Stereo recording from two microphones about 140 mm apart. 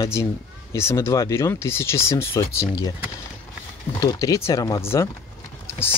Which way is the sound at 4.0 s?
25° left (ahead or behind).